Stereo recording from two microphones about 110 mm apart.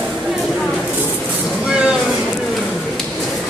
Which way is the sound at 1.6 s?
10° right (ahead or behind).